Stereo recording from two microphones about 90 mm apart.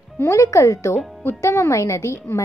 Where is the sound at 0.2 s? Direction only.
35° left (ahead or behind).